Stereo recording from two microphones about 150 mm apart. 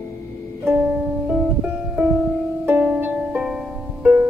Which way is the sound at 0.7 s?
5° right (ahead or behind).